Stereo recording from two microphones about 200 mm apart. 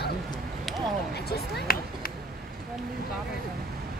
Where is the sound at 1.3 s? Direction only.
50° left (ahead or behind).